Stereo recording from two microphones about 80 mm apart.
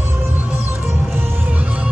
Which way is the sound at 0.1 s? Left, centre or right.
Right.